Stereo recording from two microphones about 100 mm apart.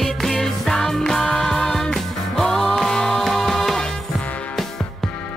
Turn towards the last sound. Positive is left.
turn(degrees=5)  # may be behind; listen again after turning